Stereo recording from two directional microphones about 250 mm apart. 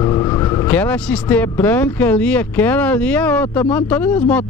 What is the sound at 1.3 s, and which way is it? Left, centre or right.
Speech, centre.